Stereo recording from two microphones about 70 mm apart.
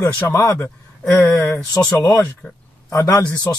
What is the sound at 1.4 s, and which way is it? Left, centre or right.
Speech, left.